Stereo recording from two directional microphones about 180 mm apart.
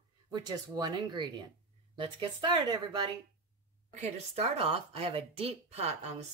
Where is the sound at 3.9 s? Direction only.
40° right (ahead or behind).